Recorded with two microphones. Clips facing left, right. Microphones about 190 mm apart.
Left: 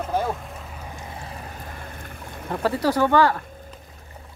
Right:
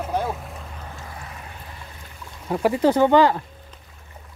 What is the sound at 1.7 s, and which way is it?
Boat, 55° left (ahead or behind).